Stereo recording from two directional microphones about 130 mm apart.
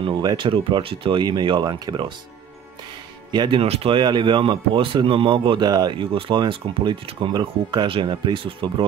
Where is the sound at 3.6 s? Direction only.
50° right (ahead or behind).